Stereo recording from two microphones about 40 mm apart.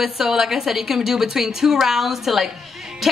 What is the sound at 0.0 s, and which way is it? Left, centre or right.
A woman's voice, centre.